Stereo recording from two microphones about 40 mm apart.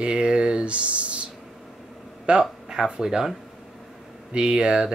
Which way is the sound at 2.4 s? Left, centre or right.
Centre.